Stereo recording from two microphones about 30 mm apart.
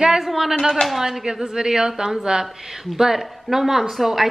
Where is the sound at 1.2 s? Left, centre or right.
Right.